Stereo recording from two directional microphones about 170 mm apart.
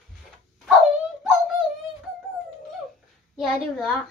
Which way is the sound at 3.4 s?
Centre (ahead or behind).